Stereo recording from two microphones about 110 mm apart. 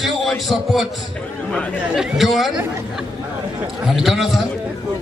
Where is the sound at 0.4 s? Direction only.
Centre (ahead or behind).